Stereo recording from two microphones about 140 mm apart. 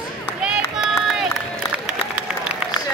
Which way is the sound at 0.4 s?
5° right (ahead or behind).